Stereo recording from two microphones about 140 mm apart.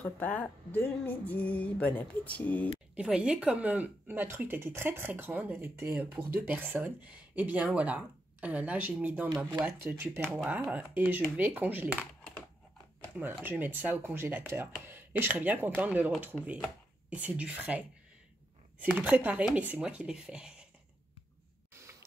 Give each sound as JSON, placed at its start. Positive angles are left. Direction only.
{"t": 0.0, "sound": "speech", "side_deg": 10}
{"t": 3.0, "sound": "speech", "side_deg": -5}
{"t": 13.2, "sound": "speech", "side_deg": -15}